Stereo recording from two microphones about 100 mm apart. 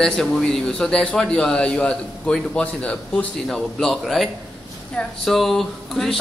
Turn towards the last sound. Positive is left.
turn(degrees=5)  # may be behind; listen again after turning